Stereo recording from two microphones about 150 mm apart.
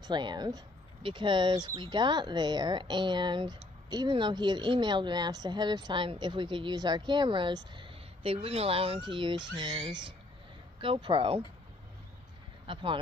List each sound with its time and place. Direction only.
0.0 s speech: 30° right (ahead or behind)
12.7 s speech: 35° right (ahead or behind)